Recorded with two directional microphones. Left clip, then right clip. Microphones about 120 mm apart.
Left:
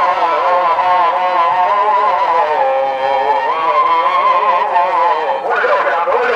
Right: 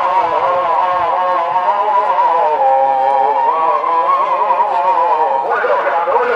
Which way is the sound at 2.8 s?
20° left (ahead or behind).